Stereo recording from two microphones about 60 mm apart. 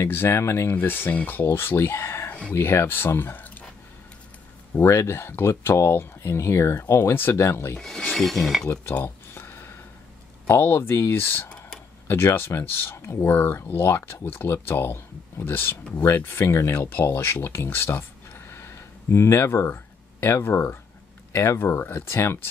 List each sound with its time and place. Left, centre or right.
0.0 s speech: left
4.7 s speech: left
8.1 s a sound: centre
9.0 s a sound: left
10.4 s speech: left
13.3 s speech: left
16.9 s speech: left
21.5 s speech: left